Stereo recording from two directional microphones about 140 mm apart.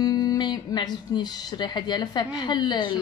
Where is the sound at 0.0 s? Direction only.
30° left (ahead or behind).